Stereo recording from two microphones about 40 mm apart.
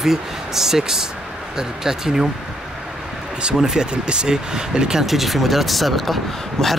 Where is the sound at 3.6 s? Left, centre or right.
Centre.